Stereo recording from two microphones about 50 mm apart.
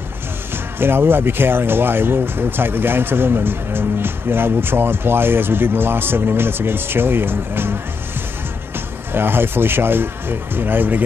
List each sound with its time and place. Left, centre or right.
0.7 s speech: right
8.7 s speech: right